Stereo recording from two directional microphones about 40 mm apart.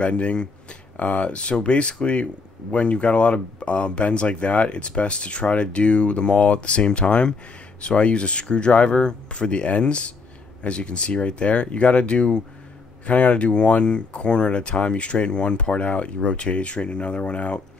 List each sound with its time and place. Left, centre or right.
0.0 s speech: left